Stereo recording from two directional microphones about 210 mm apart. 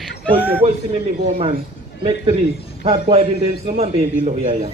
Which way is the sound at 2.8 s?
25° right (ahead or behind).